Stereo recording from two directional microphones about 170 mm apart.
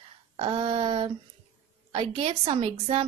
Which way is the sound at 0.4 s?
30° right (ahead or behind).